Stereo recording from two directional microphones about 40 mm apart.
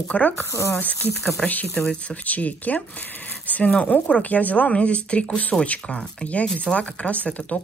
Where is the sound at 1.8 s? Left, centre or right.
Left.